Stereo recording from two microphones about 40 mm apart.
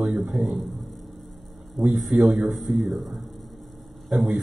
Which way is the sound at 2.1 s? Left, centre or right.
Centre.